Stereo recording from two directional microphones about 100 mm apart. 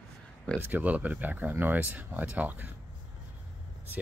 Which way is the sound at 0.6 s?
15° right (ahead or behind).